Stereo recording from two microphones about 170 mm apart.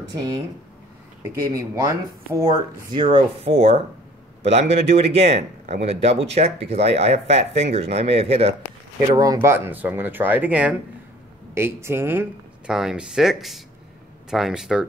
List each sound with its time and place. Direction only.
1.5 s speech: 20° right (ahead or behind); by 8.5 s 35° right (ahead or behind)
9.1 s speech: 20° right (ahead or behind); by 14.9 s 5° right (ahead or behind)